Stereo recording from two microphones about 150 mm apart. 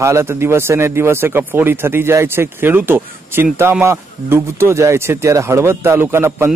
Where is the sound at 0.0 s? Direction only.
20° right (ahead or behind).